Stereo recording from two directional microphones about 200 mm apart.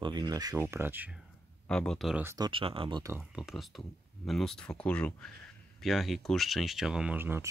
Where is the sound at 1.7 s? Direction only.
5° left (ahead or behind).